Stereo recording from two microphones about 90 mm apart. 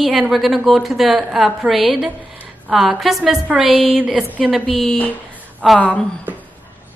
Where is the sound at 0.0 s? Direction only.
Centre (ahead or behind).